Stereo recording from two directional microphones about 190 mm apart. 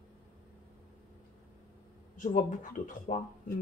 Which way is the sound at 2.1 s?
45° left (ahead or behind).